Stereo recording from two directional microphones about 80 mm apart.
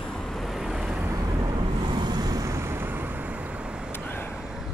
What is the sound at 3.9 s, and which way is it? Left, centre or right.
Vehicle, left.